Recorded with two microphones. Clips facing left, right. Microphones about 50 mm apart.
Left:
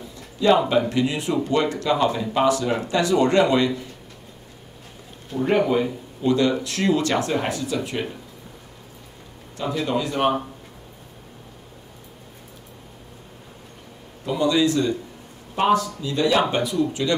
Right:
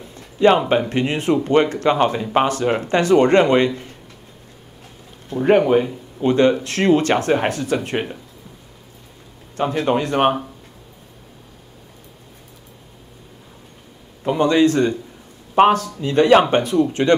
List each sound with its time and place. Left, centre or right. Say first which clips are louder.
0.4 s speech: right 3 dB; right
5.9 s speech: right 2 dB; right
9.6 s a man's voice: right 5 dB; right
14.2 s a man's voice: right 5 dB; right